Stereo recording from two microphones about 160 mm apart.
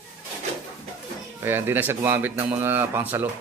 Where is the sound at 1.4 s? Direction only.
15° right (ahead or behind).